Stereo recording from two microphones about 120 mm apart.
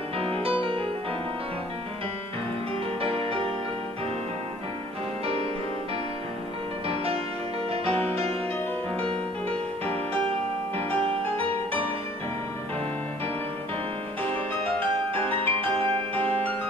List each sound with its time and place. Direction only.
0.4 s music: 50° right (ahead or behind)
3.0 s music: 50° right (ahead or behind)
5.2 s music: 60° right (ahead or behind)
7.7 s music: 55° right (ahead or behind)
11.4 s music: 50° right (ahead or behind)
15.3 s music: 45° right (ahead or behind)
16.2 s music: 15° left (ahead or behind)